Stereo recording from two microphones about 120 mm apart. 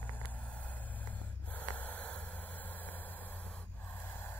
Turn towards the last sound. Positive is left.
turn(degrees=15)  # may be behind; listen again after turning